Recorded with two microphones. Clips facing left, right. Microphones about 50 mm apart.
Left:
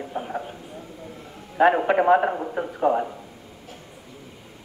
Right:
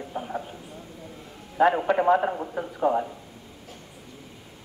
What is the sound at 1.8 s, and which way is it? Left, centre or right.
Speech, left.